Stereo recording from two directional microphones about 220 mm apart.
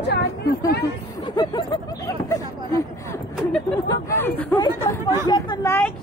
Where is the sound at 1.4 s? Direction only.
20° left (ahead or behind).